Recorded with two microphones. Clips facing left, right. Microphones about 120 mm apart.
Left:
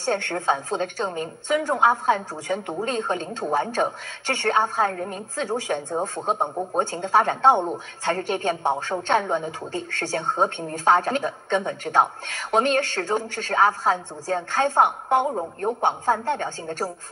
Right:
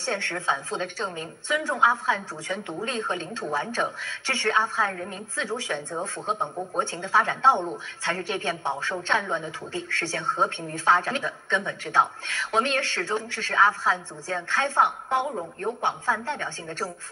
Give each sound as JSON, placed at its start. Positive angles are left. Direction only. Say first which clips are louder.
{"t": 0.0, "sound": "a woman's voice", "louder": "left 5 dB", "side_deg": 45}